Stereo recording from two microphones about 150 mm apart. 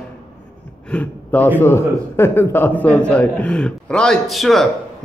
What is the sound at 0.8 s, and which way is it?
A man's voice, 10° left (ahead or behind).